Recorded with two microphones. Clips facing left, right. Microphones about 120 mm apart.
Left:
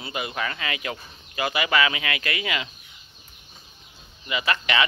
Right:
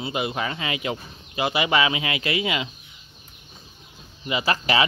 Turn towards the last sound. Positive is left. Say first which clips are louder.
# right 2 dB
turn(degrees=-30)  # may be behind; listen again after turning